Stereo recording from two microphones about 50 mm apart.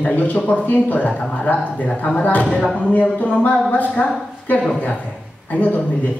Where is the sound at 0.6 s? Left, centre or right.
Left.